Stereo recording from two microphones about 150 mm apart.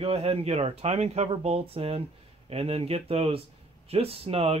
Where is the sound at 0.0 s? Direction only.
40° right (ahead or behind).